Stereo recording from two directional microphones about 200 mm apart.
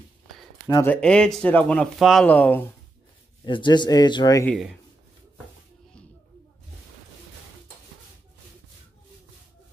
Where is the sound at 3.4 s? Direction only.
25° left (ahead or behind).